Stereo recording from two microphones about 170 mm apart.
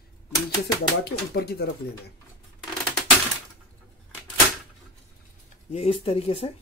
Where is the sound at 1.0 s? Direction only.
70° left (ahead or behind).